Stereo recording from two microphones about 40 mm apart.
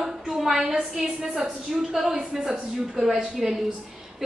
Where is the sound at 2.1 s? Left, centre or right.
Centre.